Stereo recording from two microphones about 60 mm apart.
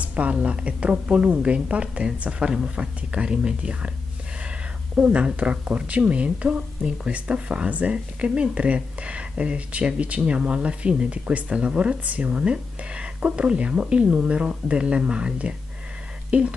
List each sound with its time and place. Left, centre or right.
0.0 s speech: right
4.9 s speech: right